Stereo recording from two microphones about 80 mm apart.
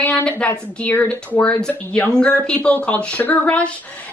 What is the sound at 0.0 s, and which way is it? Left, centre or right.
A woman's voice, centre.